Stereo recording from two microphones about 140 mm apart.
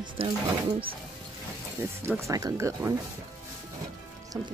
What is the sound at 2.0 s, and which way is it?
Speech, 20° right (ahead or behind).